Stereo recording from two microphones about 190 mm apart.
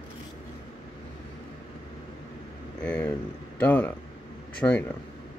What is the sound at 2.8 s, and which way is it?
Speech, 5° left (ahead or behind).